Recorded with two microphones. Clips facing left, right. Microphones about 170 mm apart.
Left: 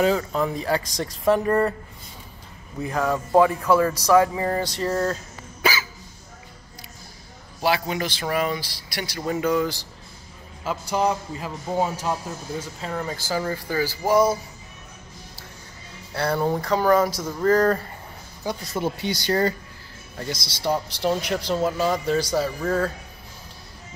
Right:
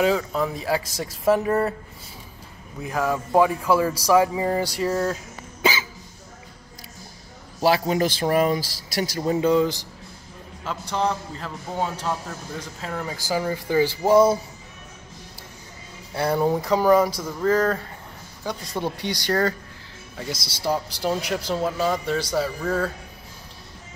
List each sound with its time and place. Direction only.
0.0 s speech: centre (ahead or behind)
2.8 s speech: 5° right (ahead or behind)
5.6 s hiccup: 20° right (ahead or behind)
7.6 s speech: 40° right (ahead or behind)
9.2 s speech: 25° right (ahead or behind)
10.6 s a man's voice: 10° left (ahead or behind)
12.5 s speech: centre (ahead or behind); by 14.4 s 25° right (ahead or behind)
16.1 s speech: 15° right (ahead or behind); by 19.4 s centre (ahead or behind)
20.6 s speech: 5° right (ahead or behind)